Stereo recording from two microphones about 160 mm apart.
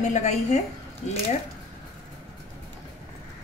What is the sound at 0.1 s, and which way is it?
Speech, 45° left (ahead or behind).